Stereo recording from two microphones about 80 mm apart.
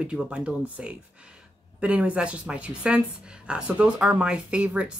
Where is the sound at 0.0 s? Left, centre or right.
Centre.